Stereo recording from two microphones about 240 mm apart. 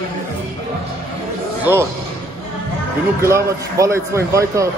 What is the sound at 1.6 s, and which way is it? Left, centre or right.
Speech, centre.